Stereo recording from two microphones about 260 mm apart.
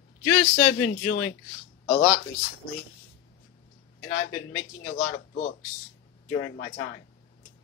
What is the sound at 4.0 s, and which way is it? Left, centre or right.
Speech, left.